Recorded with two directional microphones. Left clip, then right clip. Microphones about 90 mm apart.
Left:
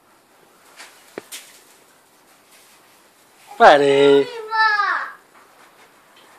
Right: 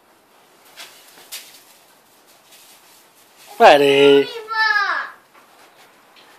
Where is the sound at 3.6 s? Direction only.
35° right (ahead or behind).